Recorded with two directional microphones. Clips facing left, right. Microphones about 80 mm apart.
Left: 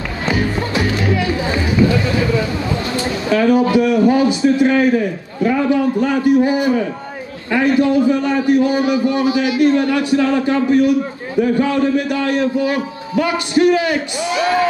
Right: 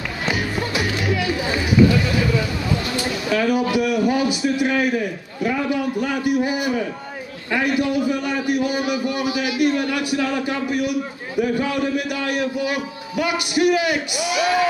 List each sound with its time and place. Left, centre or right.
0.3 s music: left
3.0 s a man's voice: left